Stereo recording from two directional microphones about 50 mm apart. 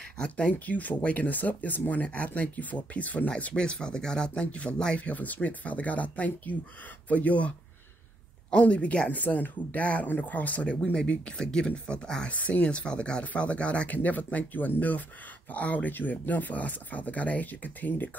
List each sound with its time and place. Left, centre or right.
0.2 s speech: left